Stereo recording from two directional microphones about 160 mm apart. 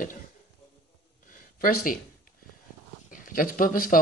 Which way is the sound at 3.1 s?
60° left (ahead or behind).